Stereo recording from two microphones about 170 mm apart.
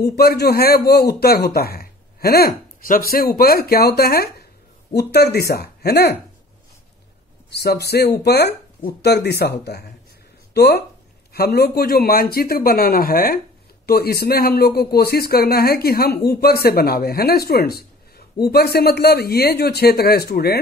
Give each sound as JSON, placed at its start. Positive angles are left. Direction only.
{"t": 0.0, "sound": "a man's voice", "side_deg": 65}
{"t": 7.5, "sound": "a man's voice", "side_deg": 70}